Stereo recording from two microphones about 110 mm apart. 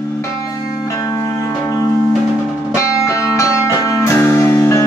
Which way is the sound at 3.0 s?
30° left (ahead or behind).